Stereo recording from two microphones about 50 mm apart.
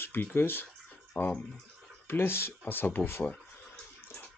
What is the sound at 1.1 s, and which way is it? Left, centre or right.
Speech, left.